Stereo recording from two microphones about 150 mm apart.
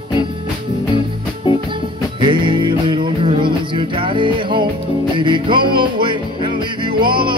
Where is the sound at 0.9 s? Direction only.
35° left (ahead or behind).